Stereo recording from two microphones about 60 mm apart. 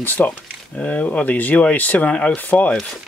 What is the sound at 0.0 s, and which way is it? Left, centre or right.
Speech, left.